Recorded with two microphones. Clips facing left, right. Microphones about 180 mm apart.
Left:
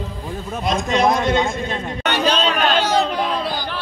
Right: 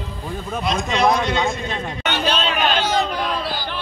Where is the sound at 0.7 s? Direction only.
45° left (ahead or behind).